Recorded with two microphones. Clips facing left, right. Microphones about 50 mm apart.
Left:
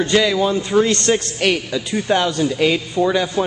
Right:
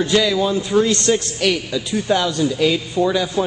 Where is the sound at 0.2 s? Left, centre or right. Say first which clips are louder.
Left 1 dB; centre.